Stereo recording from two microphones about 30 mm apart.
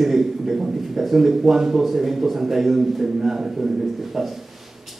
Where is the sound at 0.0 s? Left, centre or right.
Centre.